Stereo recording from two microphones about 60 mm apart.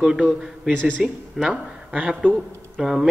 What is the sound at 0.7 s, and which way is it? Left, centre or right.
Speech, centre.